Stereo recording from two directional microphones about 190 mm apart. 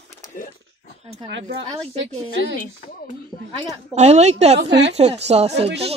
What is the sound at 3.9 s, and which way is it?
Speech, 35° right (ahead or behind).